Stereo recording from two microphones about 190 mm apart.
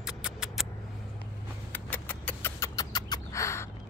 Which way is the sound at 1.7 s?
10° left (ahead or behind).